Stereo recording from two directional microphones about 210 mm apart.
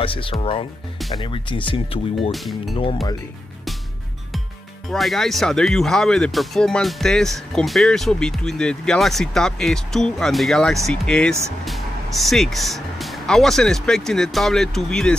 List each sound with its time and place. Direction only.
0.0 s speech: 25° left (ahead or behind)
2.3 s speech: centre (ahead or behind)
2.7 s speech: 25° left (ahead or behind)
4.8 s speech: centre (ahead or behind)